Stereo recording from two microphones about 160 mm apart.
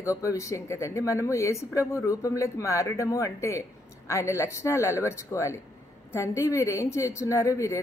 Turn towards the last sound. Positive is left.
turn(degrees=20)  # may be behind; listen again after turning